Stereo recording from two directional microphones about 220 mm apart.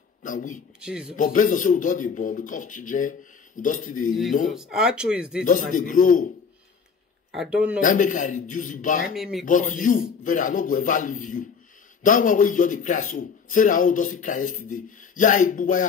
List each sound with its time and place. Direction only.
0.2 s a man's voice: 35° left (ahead or behind)
0.7 s speech: 5° right (ahead or behind)
1.1 s a man's voice: 35° left (ahead or behind)
4.5 s speech: centre (ahead or behind)
5.4 s a man's voice: 35° left (ahead or behind)
7.3 s speech: 5° right (ahead or behind)
7.8 s a man's voice: 35° left (ahead or behind)
9.1 s speech: centre (ahead or behind)
9.5 s a man's voice: 35° left (ahead or behind)